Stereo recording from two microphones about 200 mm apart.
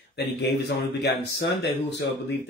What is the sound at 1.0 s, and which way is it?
Speech, 55° left (ahead or behind).